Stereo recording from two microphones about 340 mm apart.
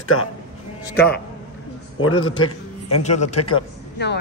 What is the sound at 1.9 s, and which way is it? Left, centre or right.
Speech, left.